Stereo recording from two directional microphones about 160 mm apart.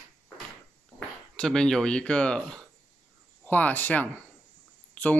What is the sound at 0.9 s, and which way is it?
Speech, 5° left (ahead or behind).